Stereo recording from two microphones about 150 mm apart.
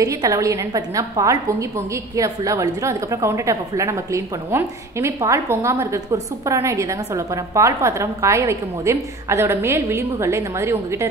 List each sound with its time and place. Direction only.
0.0 s a woman's voice: 20° right (ahead or behind)